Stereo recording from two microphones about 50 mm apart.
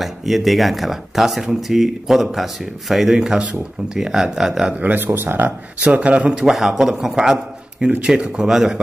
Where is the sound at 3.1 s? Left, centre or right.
Centre.